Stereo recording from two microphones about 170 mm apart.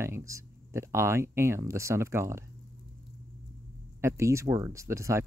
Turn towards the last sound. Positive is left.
turn(degrees=-15)  # may be behind; listen again after turning